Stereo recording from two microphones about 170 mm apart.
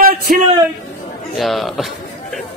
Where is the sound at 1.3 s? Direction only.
Centre (ahead or behind).